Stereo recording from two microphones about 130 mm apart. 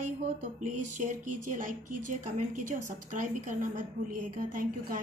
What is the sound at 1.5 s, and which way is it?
A woman's voice, 85° right.